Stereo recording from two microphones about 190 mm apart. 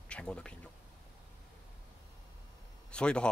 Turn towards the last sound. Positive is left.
turn(degrees=5)  # may be behind; listen again after turning